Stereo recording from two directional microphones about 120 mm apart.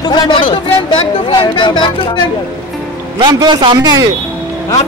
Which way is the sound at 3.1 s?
40° right (ahead or behind).